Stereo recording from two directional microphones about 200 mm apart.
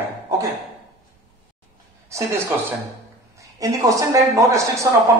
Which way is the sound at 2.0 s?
15° right (ahead or behind).